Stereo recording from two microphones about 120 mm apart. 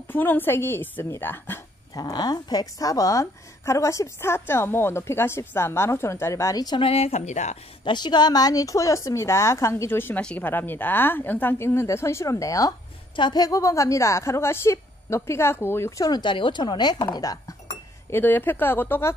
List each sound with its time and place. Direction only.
0.1 s speech: 15° left (ahead or behind)
2.0 s a woman's voice: 35° left (ahead or behind)
6.8 s speech: 55° left (ahead or behind); by 7.5 s 75° left (ahead or behind)
7.8 s a woman's voice: 40° left (ahead or behind); by 16.1 s 20° left (ahead or behind)
16.1 s speech: 40° left (ahead or behind)
18.1 s speech: 15° left (ahead or behind)